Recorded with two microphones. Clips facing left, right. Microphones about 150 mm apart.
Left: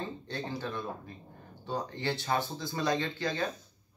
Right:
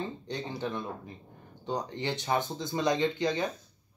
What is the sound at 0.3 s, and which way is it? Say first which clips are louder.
Speech: right 2 dB; 20° right (ahead or behind).